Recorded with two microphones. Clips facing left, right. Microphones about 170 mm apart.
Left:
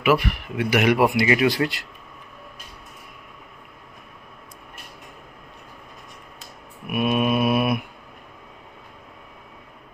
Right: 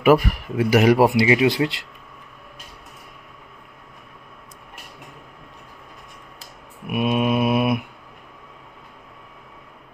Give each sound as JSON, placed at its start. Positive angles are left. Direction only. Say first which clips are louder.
{"t": 0.0, "sound": "speech", "louder": "right 4 dB", "side_deg": -40}
{"t": 1.3, "sound": "speech", "louder": "right 2 dB", "side_deg": -20}
{"t": 6.9, "sound": "mantra", "louder": "right 1 dB", "side_deg": -20}